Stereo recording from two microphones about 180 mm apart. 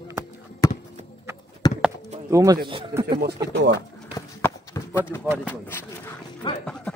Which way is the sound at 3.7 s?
15° left (ahead or behind).